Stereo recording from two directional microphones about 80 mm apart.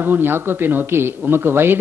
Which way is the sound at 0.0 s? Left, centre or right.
Right.